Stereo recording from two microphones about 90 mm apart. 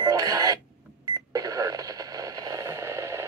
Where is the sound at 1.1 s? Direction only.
45° right (ahead or behind).